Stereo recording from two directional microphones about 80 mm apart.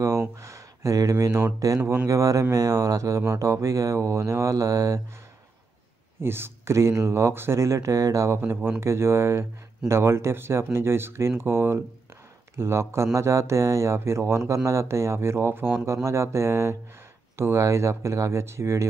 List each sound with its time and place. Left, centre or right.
0.4 s a sound: right
1.6 s speech: right
6.2 s speech: right